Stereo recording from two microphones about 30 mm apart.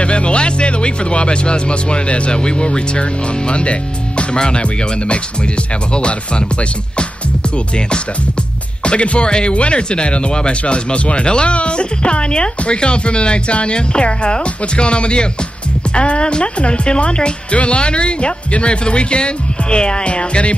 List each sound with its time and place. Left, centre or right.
0.0 s a woman's voice: left
7.5 s a woman's voice: left